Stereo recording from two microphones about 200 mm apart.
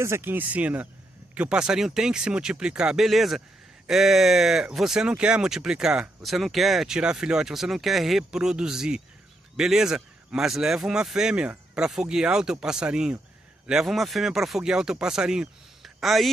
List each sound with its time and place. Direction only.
0.0 s speech: 10° right (ahead or behind)